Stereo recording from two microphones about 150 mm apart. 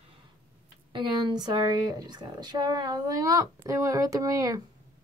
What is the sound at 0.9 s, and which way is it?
Speech, 30° right (ahead or behind).